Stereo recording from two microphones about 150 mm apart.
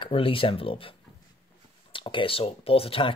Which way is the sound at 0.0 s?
35° left (ahead or behind).